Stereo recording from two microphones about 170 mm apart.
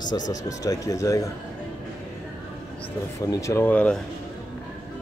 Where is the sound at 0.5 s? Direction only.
20° left (ahead or behind).